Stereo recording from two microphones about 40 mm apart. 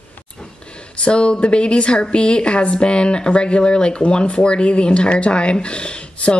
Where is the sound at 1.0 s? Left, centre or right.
Left.